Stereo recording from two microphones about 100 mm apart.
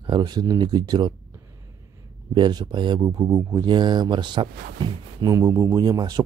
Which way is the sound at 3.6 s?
50° right (ahead or behind).